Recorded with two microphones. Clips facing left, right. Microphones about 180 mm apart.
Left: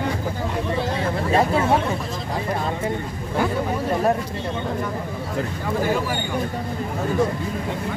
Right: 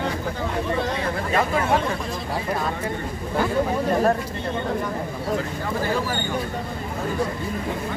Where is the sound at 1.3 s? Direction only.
30° left (ahead or behind).